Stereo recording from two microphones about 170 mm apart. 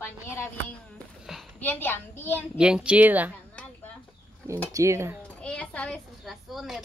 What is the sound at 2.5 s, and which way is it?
Speech, 5° right (ahead or behind).